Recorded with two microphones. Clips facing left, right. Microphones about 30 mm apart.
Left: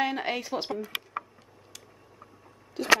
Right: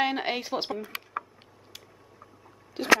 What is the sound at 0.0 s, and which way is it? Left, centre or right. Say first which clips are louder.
Speech: right 1 dB; right.